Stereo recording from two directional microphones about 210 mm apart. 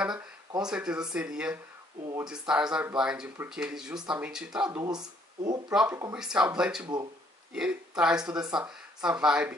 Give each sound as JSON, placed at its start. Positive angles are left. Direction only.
{"t": 0.6, "sound": "speech", "side_deg": -5}
{"t": 4.8, "sound": "speech", "side_deg": -20}
{"t": 5.7, "sound": "speech", "side_deg": -5}
{"t": 8.3, "sound": "speech", "side_deg": -20}
{"t": 8.5, "sound": "speech", "side_deg": -5}